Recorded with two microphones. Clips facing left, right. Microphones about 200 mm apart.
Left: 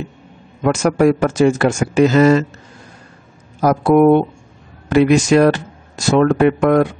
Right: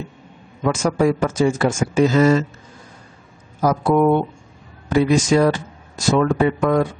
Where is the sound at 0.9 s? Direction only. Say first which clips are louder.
Left 5 dB; 70° left (ahead or behind).